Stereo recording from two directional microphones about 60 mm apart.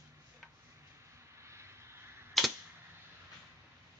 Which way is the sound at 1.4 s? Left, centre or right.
Right.